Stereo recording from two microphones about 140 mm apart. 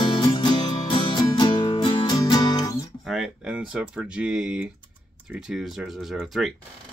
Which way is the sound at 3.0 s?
Centre (ahead or behind).